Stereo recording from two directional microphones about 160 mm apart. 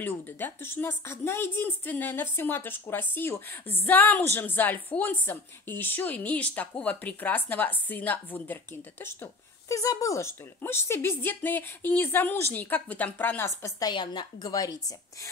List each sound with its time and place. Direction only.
0.0 s speech: 15° left (ahead or behind)